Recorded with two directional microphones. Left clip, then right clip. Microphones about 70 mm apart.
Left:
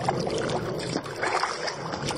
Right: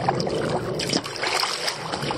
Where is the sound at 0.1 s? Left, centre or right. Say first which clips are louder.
Right 2 dB; centre.